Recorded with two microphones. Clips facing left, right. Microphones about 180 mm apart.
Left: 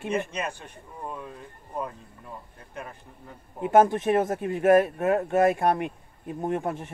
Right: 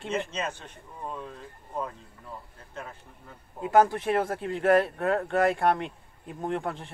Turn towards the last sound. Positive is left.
turn(degrees=15)  # may be behind; listen again after turning